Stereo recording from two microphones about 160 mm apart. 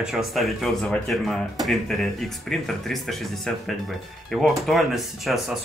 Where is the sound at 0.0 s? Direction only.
Centre (ahead or behind).